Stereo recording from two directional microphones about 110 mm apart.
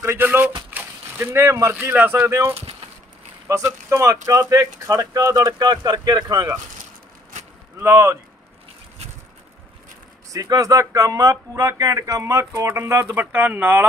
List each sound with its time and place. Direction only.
0.0 s speech: 20° right (ahead or behind)
7.8 s speech: 25° right (ahead or behind)
10.3 s speech: 35° right (ahead or behind); by 13.8 s 15° right (ahead or behind)